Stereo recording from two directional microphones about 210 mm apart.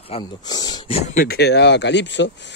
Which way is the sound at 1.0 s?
40° left (ahead or behind).